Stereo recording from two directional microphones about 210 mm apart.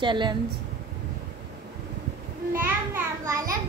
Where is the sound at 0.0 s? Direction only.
20° right (ahead or behind).